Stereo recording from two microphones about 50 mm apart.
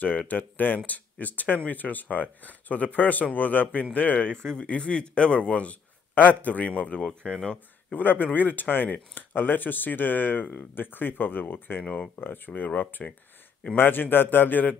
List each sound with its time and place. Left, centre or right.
0.3 s speech: left
4.6 s a man's voice: left
8.0 s speech: left
11.8 s a man's voice: left
12.2 s speech: left